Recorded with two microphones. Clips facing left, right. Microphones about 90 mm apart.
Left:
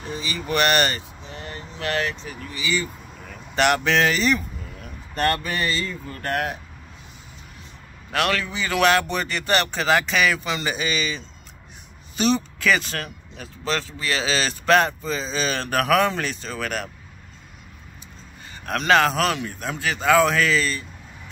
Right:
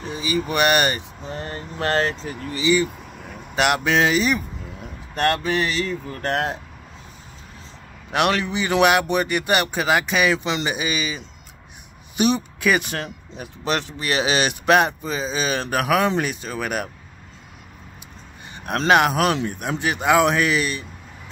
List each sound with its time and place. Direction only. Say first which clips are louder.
0.0 s speech: right 6 dB; 15° right (ahead or behind)
1.2 s speech: right 5 dB; 40° right (ahead or behind)
2.6 s speech: right 7 dB; 20° right (ahead or behind)
3.5 s speech: even; 5° right (ahead or behind); by 6.6 s 25° right (ahead or behind)
8.1 s speech: right 3 dB; 20° right (ahead or behind)
10.3 s speech: right 3 dB; 25° right (ahead or behind)
18.7 s speech: right 2 dB; 20° right (ahead or behind)